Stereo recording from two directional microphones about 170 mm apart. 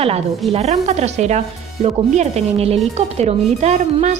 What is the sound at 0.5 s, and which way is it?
Speech, 40° right (ahead or behind).